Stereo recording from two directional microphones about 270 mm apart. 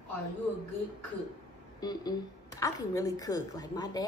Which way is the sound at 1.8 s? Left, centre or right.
Centre.